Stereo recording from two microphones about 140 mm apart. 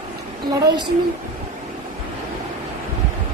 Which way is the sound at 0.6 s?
30° right (ahead or behind).